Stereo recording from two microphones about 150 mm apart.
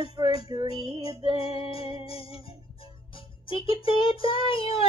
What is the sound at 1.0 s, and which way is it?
Music, 40° left (ahead or behind).